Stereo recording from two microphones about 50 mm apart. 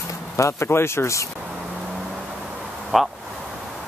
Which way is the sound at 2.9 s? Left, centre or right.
Centre.